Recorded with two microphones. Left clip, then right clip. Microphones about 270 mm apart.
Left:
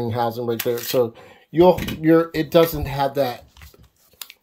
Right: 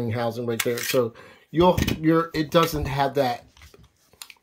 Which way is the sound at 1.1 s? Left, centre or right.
Right.